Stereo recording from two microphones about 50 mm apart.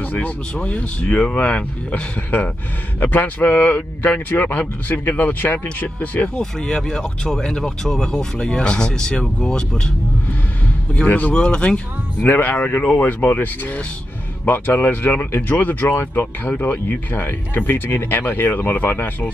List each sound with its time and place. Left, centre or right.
0.0 s a sound: left
0.6 s speech: left
6.3 s speech: centre
11.1 s speech: left
11.3 s speech: centre
12.2 s speech: left